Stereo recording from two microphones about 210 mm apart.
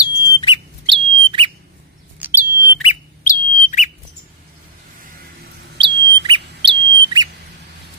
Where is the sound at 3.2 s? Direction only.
35° left (ahead or behind).